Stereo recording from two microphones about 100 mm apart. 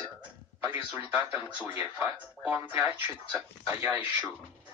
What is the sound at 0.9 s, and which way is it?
Speech, 20° right (ahead or behind).